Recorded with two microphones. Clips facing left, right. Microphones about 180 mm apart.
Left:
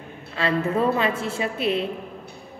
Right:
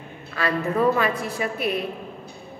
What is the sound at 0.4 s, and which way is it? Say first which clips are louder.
A woman's voice: even; 25° left (ahead or behind).